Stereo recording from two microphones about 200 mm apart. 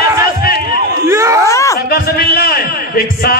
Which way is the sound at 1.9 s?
50° left (ahead or behind).